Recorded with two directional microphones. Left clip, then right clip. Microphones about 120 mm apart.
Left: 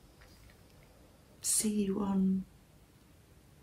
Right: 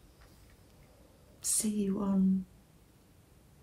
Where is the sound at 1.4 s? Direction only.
15° right (ahead or behind).